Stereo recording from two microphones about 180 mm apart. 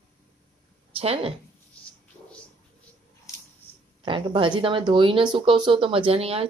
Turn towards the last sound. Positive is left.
turn(degrees=-30)  # may be behind; listen again after turning